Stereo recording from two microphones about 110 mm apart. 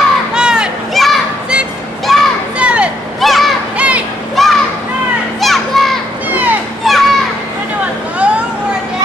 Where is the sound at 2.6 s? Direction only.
10° right (ahead or behind).